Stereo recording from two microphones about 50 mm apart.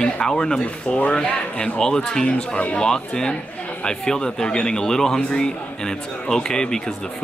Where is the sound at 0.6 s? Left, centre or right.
Left.